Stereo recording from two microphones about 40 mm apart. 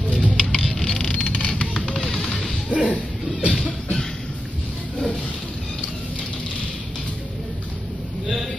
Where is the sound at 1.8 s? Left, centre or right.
Left.